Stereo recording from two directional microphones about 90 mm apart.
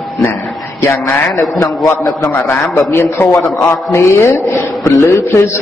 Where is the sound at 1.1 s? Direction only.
35° left (ahead or behind).